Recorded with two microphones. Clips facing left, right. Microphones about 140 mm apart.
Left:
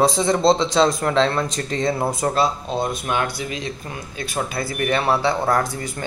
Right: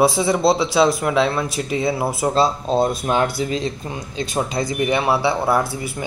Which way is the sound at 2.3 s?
30° right (ahead or behind).